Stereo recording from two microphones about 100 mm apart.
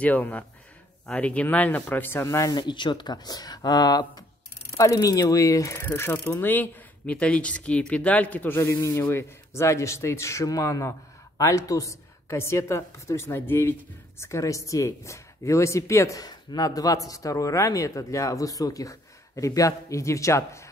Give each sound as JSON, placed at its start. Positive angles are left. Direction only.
{"t": 0.0, "sound": "a man's voice", "side_deg": 15}
{"t": 2.2, "sound": "a woman's voice", "side_deg": 35}
{"t": 2.5, "sound": "a man's voice", "side_deg": 50}
{"t": 8.5, "sound": "a man's voice", "side_deg": 30}